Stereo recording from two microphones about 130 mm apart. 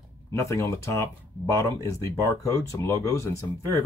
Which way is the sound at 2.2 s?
25° left (ahead or behind).